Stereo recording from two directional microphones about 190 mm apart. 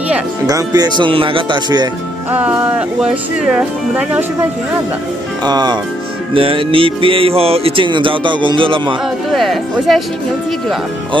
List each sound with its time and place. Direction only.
0.5 s speech: 20° right (ahead or behind)
2.3 s speech: 10° right (ahead or behind)
4.1 s speech: 10° right (ahead or behind)
5.4 s speech: 20° right (ahead or behind)
9.3 s speech: centre (ahead or behind)